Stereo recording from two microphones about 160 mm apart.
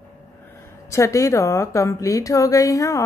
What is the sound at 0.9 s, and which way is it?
A woman's voice, 20° left (ahead or behind).